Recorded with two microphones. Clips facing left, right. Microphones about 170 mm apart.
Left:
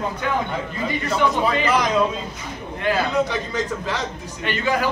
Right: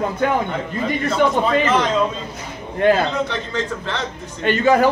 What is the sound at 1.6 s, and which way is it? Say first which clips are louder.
Speech: right 1 dB; 10° left (ahead or behind).